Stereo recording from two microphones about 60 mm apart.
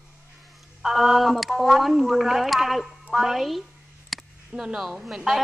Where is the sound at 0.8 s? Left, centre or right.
Centre.